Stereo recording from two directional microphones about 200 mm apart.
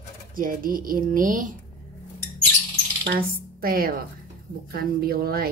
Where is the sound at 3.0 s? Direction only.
45° right (ahead or behind).